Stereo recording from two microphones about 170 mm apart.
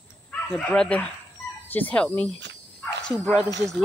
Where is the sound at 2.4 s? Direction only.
90° right.